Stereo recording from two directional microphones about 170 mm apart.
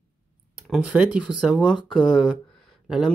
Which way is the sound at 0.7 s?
5° right (ahead or behind).